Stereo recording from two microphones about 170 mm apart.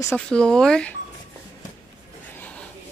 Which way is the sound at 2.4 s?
10° left (ahead or behind).